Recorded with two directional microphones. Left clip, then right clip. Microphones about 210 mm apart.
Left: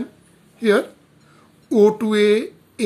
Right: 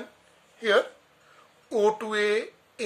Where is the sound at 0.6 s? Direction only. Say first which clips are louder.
Left 5 dB; 25° left (ahead or behind).